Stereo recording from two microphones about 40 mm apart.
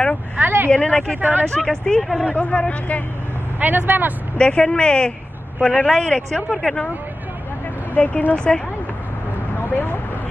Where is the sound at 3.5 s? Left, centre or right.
Right.